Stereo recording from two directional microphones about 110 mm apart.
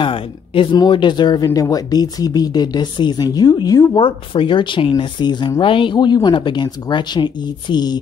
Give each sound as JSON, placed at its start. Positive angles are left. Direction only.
{"t": 0.0, "sound": "a sound", "side_deg": 50}
{"t": 0.7, "sound": "speech", "side_deg": 45}
{"t": 3.9, "sound": "speech", "side_deg": 50}